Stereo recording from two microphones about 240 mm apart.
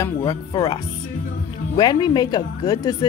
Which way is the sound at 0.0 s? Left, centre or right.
Centre.